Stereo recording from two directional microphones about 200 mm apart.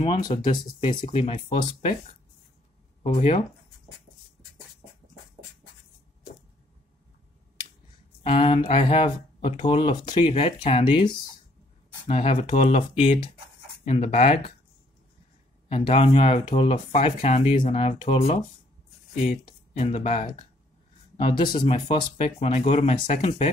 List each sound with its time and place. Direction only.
0.3 s speech: 25° left (ahead or behind)
3.0 s speech: 35° left (ahead or behind)
8.2 s speech: 25° left (ahead or behind)
12.1 s speech: 35° left (ahead or behind)
15.7 s speech: 30° left (ahead or behind)
19.8 s speech: 35° left (ahead or behind)